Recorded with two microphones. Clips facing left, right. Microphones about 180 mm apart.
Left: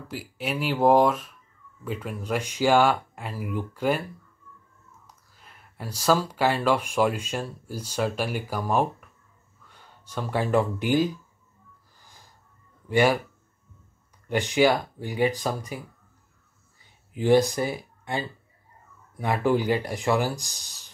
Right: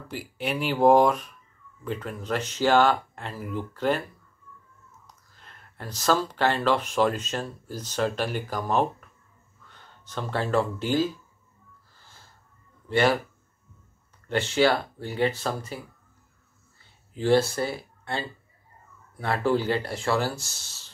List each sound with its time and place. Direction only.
0.1 s speech: 5° left (ahead or behind)
5.0 s speech: 10° left (ahead or behind)
12.0 s a sound: 15° left (ahead or behind)
12.8 s speech: 10° left (ahead or behind)
14.2 s speech: 15° left (ahead or behind)
16.8 s speech: 15° left (ahead or behind)